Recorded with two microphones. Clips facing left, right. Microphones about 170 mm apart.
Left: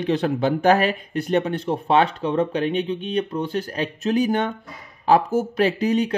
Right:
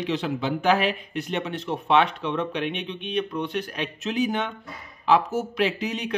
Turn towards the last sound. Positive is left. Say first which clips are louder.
# left 6 dB
turn(degrees=40)  # may be behind; listen again after turning